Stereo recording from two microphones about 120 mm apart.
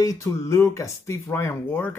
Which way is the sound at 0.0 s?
30° left (ahead or behind).